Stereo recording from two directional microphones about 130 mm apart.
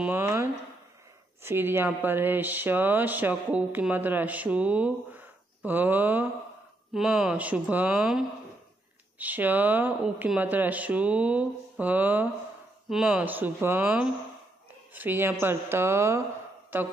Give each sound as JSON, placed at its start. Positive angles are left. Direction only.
{"t": 0.0, "sound": "speech", "side_deg": -15}